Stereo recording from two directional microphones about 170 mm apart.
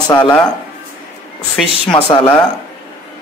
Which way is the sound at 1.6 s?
5° left (ahead or behind).